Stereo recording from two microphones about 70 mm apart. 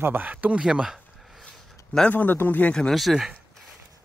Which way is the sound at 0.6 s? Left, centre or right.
Centre.